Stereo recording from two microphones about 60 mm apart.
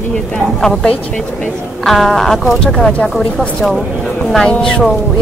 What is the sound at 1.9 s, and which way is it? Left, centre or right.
Speech, centre.